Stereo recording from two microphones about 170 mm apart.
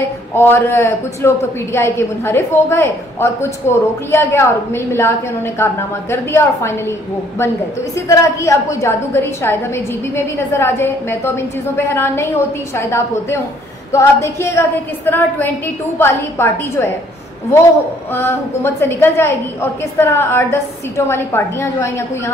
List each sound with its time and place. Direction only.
0.3 s a woman's voice: 15° left (ahead or behind)
8.1 s a woman's voice: 15° left (ahead or behind)
18.1 s a woman's voice: 15° left (ahead or behind)